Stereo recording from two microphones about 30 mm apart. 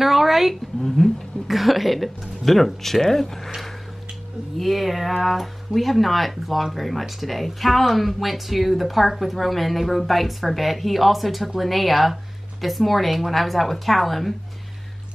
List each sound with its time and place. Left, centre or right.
0.0 s a sound: centre
0.8 s speech: centre
4.6 s speech: centre